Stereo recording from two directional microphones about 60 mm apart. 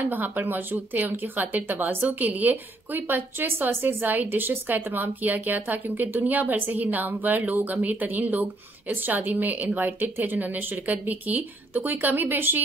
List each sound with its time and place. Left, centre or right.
0.0 s speech: right